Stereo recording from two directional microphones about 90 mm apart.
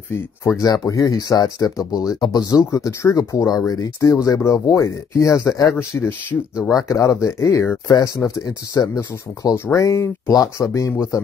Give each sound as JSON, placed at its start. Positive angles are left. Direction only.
{"t": 0.1, "sound": "speech", "side_deg": 35}